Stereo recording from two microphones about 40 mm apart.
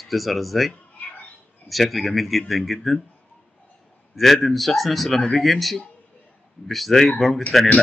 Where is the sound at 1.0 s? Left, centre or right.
Left.